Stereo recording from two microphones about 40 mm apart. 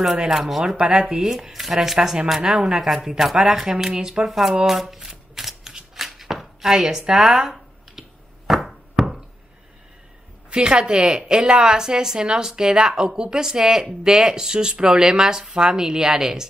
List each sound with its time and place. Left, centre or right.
0.3 s speech: centre
0.7 s a woman's voice: right
1.3 s speech: centre
4.3 s speech: centre
4.6 s shuffling cards: centre
6.0 s chopping: centre
8.5 s a sound: centre
10.5 s a woman's voice: right